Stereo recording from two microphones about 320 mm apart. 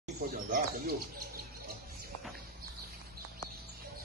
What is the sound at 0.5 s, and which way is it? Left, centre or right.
Speech, right.